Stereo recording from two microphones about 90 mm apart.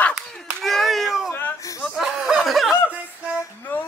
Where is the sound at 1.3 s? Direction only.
25° left (ahead or behind).